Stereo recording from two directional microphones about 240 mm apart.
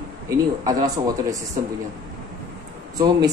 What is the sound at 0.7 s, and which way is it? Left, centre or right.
Speech, centre.